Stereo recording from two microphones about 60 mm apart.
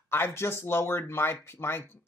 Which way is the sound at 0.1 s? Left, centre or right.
Left.